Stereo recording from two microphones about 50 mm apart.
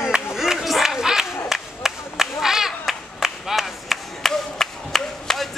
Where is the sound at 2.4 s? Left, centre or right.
Centre.